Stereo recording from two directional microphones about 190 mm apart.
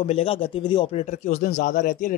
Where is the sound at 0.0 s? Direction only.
30° left (ahead or behind).